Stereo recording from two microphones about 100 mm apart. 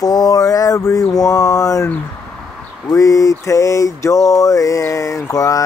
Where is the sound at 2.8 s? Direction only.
35° left (ahead or behind).